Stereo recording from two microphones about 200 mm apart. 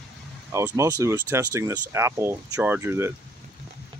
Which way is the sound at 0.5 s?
15° right (ahead or behind).